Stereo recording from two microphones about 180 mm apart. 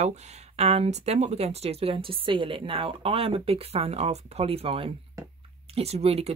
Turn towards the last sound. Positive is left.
turn(degrees=-35)  # may be behind; listen again after turning